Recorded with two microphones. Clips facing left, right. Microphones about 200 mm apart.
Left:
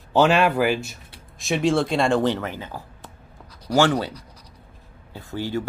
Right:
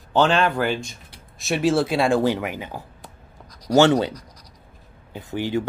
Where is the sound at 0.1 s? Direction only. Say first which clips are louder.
Left 1 dB; 10° left (ahead or behind).